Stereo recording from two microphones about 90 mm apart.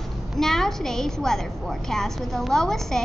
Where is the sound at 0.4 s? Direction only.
5° left (ahead or behind).